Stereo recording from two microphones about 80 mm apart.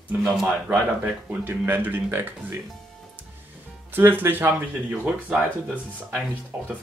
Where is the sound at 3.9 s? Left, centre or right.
Right.